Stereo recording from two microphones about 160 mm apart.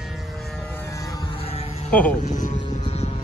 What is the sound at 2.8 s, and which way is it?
Music, 40° left (ahead or behind).